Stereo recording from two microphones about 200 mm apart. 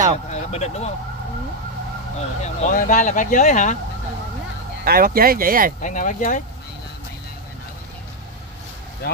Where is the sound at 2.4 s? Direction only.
40° left (ahead or behind).